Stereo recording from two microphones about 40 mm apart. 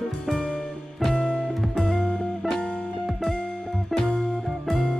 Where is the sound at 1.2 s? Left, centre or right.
Left.